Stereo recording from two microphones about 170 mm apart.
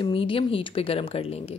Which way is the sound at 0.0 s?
30° left (ahead or behind).